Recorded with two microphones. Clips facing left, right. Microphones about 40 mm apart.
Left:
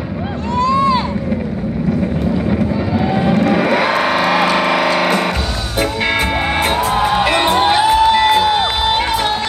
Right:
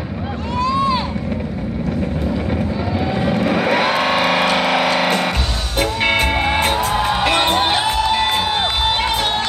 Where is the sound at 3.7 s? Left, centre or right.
Right.